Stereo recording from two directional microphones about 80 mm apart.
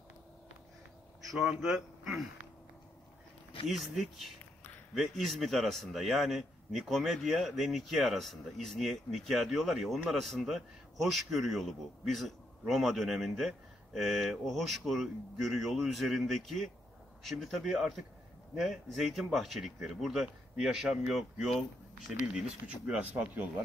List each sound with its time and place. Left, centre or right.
3.6 s a man's voice: centre